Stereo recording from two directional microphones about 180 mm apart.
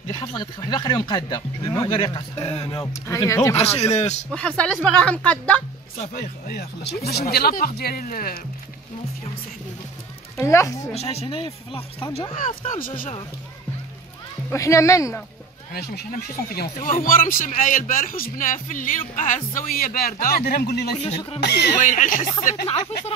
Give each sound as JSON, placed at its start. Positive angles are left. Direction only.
{"t": 0.1, "sound": "speech", "side_deg": 25}
{"t": 2.6, "sound": "speech", "side_deg": 20}
{"t": 3.5, "sound": "speech", "side_deg": 35}
{"t": 4.3, "sound": "speech", "side_deg": 5}
{"t": 5.9, "sound": "speech", "side_deg": 45}
{"t": 10.3, "sound": "speech", "side_deg": 15}
{"t": 11.0, "sound": "speech", "side_deg": 35}
{"t": 12.6, "sound": "a man's voice", "side_deg": 50}
{"t": 14.5, "sound": "speech", "side_deg": 15}
{"t": 15.7, "sound": "a man's voice", "side_deg": 60}
{"t": 20.9, "sound": "speech", "side_deg": 25}
{"t": 21.4, "sound": "speech", "side_deg": 65}
{"t": 21.8, "sound": "a man's voice", "side_deg": 45}